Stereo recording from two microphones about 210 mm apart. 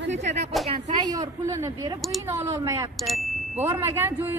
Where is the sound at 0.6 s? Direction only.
Centre (ahead or behind).